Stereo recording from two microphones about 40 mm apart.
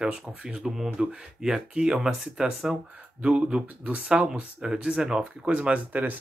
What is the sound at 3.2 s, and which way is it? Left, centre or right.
Speech, right.